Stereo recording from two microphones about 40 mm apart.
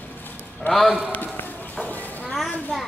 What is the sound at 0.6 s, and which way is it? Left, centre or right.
Speech, left.